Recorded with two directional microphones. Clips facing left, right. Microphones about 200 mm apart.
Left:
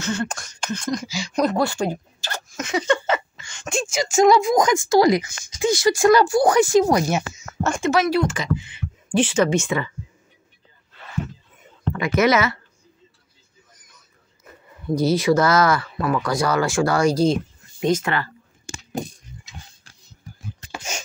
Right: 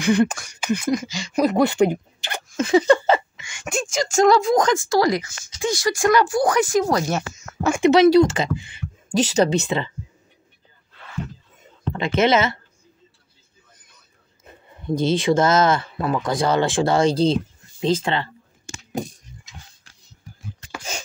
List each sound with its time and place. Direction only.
0.0 s speech: 15° right (ahead or behind)
1.0 s speech: centre (ahead or behind)
1.6 s speech: 20° right (ahead or behind)
2.5 s a sound: 30° right (ahead or behind)
3.3 s a sound: 15° right (ahead or behind)
3.6 s speech: centre (ahead or behind)
4.0 s speech: 10° left (ahead or behind)
4.8 s speech: 20° left (ahead or behind)
7.6 s speech: 10° right (ahead or behind)
7.9 s speech: 25° right (ahead or behind)
8.7 s speech: 40° right (ahead or behind)
11.9 s speech: 25° right (ahead or behind)
14.4 s a sound: 25° right (ahead or behind)
15.0 s speech: 25° right (ahead or behind)